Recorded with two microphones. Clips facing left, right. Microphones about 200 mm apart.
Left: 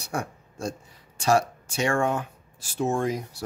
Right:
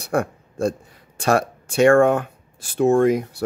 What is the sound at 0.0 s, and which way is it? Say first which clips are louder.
Speech: right 9 dB; 55° right (ahead or behind).